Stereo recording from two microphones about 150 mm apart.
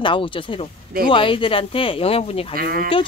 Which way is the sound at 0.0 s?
35° left (ahead or behind).